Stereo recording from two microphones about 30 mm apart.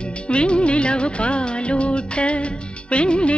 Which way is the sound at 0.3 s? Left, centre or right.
Left.